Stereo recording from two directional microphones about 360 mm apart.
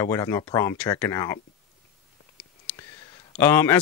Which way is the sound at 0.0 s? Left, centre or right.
Centre.